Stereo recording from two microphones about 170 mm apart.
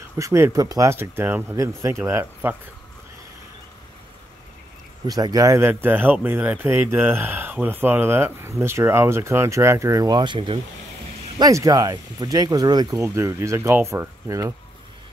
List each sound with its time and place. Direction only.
0.2 s speech: 15° right (ahead or behind)
5.0 s speech: 20° right (ahead or behind)